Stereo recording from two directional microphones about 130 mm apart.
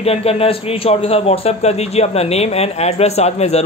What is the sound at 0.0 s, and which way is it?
Speech, 50° left (ahead or behind).